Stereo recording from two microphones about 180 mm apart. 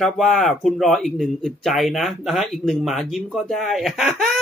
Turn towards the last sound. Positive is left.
turn(degrees=0)  # may be behind; listen again after turning